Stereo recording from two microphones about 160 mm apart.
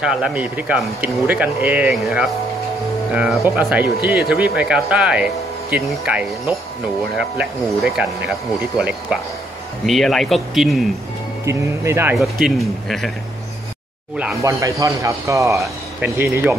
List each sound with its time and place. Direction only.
0.0 s speech: 5° right (ahead or behind)
11.4 s speech: 15° right (ahead or behind)
12.2 s speech: centre (ahead or behind)
14.4 s speech: 20° right (ahead or behind)